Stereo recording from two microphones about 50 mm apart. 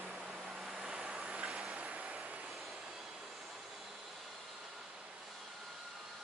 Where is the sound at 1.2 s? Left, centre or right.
Centre.